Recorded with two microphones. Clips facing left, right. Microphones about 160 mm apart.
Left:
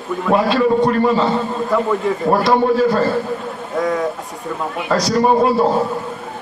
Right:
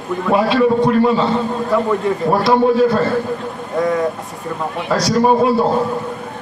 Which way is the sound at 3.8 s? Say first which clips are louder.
Right 2 dB; centre (ahead or behind).